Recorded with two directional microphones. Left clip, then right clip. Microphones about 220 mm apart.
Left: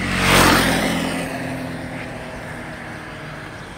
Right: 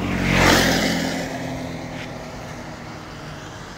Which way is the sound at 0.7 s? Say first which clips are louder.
Left 1 dB; centre (ahead or behind).